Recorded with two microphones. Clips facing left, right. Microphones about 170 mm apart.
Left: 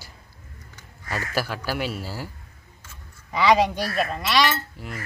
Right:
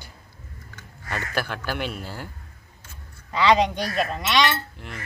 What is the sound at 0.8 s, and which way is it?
Speech, 5° left (ahead or behind).